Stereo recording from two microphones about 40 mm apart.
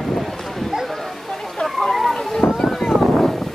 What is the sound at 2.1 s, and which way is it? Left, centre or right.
Boat, centre.